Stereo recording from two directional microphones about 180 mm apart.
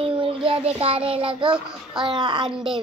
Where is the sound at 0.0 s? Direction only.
30° right (ahead or behind).